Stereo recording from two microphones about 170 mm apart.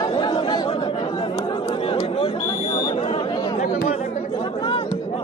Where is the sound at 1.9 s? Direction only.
30° left (ahead or behind).